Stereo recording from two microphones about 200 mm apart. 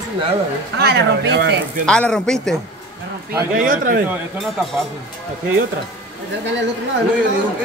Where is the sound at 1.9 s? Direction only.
5° left (ahead or behind).